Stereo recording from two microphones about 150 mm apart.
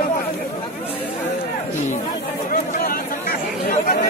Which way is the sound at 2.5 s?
70° left (ahead or behind).